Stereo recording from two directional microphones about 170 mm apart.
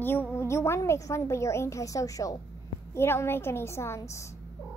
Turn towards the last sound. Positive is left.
turn(degrees=15)  # may be behind; listen again after turning